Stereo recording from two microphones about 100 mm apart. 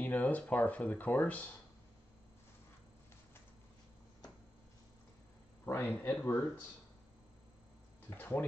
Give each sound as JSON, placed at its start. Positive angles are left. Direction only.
{"t": 0.0, "sound": "speech", "side_deg": 15}
{"t": 5.7, "sound": "speech", "side_deg": 15}
{"t": 8.1, "sound": "speech", "side_deg": 20}